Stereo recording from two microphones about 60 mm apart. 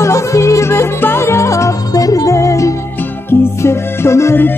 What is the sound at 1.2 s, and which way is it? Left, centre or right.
Music, left.